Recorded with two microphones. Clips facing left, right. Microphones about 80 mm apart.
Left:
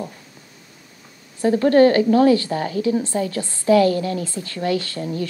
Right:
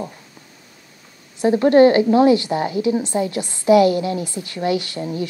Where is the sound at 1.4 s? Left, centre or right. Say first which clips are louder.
Right 2 dB; right.